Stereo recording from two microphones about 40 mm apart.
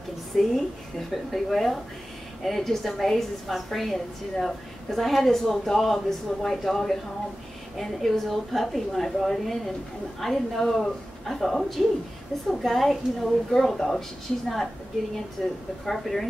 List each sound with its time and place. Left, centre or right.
0.4 s a woman's voice: centre
15.4 s speech: centre